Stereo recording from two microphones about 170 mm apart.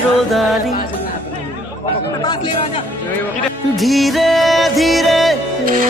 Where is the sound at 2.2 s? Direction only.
25° left (ahead or behind).